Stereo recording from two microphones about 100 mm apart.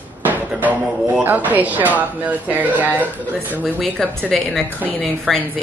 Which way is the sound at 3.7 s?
Centre (ahead or behind).